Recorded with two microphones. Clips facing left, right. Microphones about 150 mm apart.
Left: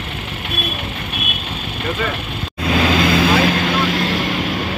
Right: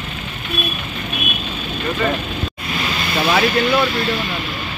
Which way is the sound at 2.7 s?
90° left.